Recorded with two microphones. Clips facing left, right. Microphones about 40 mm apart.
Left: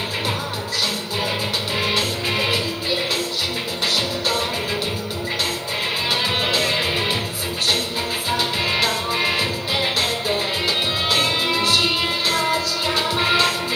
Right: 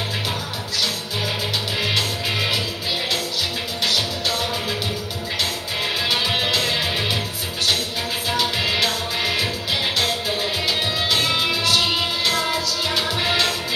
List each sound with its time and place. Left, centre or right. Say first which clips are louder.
1.8 s music: left 2 dB; left
6.5 s music: left 1 dB; left
8.4 s music: right 1 dB; left